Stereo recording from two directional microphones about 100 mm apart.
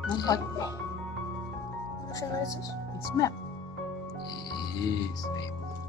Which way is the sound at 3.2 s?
35° left (ahead or behind).